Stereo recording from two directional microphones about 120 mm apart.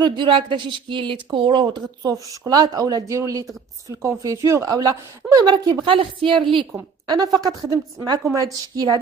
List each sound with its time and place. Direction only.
0.0 s speech: 40° right (ahead or behind)
6.7 s speech: 30° right (ahead or behind)